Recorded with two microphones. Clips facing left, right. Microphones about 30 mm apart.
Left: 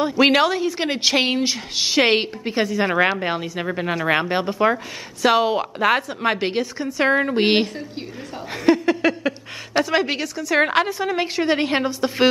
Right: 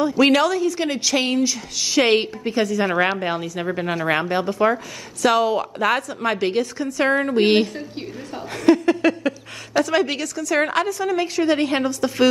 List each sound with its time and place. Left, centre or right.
0.0 s a woman's voice: left
8.6 s a sound: centre
9.8 s a woman's voice: left